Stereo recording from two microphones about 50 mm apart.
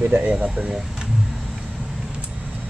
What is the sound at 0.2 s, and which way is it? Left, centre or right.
Speech, right.